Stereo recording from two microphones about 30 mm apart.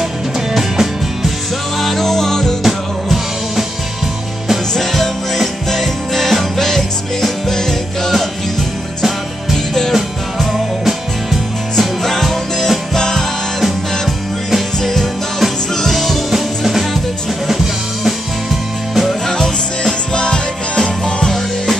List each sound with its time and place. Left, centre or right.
0.6 s music: centre
1.8 s music: centre
2.6 s music: centre
4.7 s music: centre
10.5 s music: centre
12.0 s music: centre
12.9 s music: centre
13.6 s music: centre
14.8 s music: centre
16.3 s music: centre
18.0 s music: centre
19.2 s music: left